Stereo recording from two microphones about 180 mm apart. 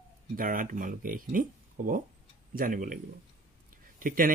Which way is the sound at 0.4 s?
50° right (ahead or behind).